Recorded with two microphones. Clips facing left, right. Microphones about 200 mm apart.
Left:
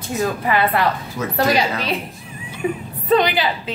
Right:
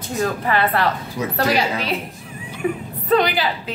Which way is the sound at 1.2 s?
15° right (ahead or behind).